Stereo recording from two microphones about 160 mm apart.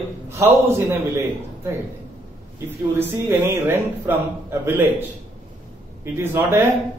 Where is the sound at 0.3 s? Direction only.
15° right (ahead or behind).